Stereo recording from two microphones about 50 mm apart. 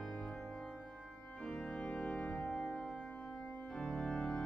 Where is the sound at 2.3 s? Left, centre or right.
Centre.